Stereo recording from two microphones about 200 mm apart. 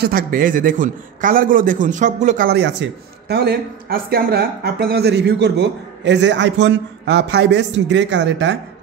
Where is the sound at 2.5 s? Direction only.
60° right (ahead or behind).